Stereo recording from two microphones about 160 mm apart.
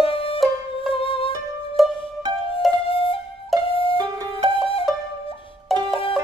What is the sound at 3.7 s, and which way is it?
Music, 35° left (ahead or behind).